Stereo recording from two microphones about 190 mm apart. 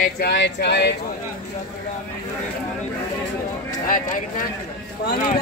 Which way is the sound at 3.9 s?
45° left (ahead or behind).